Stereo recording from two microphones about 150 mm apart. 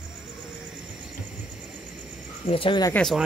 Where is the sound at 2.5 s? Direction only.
35° left (ahead or behind).